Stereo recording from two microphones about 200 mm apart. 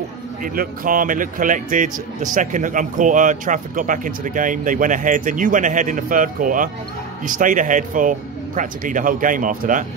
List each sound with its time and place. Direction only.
0.4 s speech: 45° right (ahead or behind)